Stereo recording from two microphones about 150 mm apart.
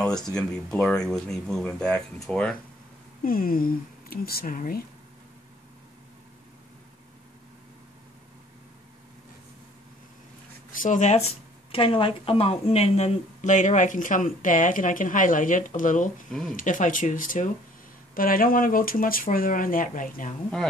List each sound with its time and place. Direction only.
0.0 s speech: 5° left (ahead or behind)
3.3 s speech: 75° left (ahead or behind)
10.8 s speech: 55° left (ahead or behind)
16.3 s speech: centre (ahead or behind)
16.5 s speech: 60° left (ahead or behind)